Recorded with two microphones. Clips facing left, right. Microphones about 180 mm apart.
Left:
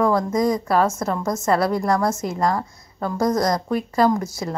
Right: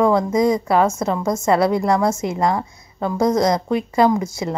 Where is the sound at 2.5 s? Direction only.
20° right (ahead or behind).